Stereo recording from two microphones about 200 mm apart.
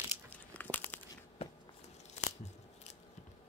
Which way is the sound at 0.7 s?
10° left (ahead or behind).